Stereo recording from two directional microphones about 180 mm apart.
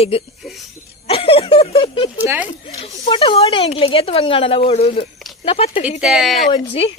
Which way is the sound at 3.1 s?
30° left (ahead or behind).